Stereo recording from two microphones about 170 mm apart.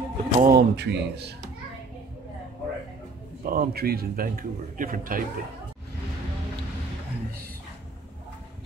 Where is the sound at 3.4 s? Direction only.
60° right (ahead or behind).